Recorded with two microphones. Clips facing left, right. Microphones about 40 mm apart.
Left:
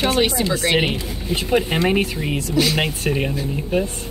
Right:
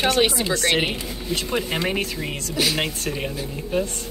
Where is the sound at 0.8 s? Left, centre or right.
Centre.